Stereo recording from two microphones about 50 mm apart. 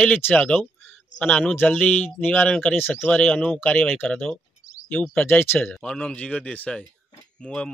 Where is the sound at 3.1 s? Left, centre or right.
Left.